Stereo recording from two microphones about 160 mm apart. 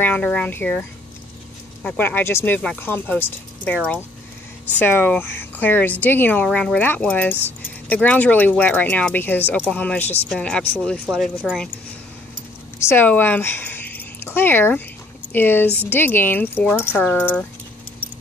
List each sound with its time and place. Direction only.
0.0 s speech: 10° left (ahead or behind)
12.7 s speech: 15° left (ahead or behind)